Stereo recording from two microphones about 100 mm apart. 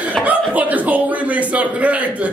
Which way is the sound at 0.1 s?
15° right (ahead or behind).